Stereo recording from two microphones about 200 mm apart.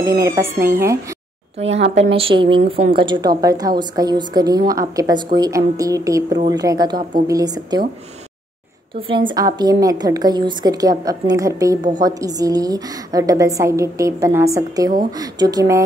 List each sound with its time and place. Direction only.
0.0 s a woman's voice: 15° right (ahead or behind)
2.0 s a woman's voice: 30° right (ahead or behind)
9.6 s a woman's voice: 20° right (ahead or behind)